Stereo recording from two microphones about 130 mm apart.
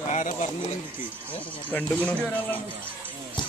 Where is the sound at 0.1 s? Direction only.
70° left (ahead or behind).